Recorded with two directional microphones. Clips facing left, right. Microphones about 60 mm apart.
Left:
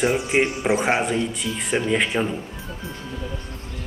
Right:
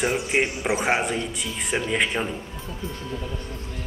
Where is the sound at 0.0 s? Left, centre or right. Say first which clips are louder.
Left 3 dB; centre.